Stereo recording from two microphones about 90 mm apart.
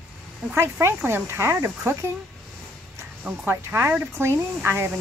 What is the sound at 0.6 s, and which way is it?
Speech, 25° right (ahead or behind).